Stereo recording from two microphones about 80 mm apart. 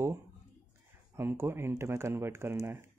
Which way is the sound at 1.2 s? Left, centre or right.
Right.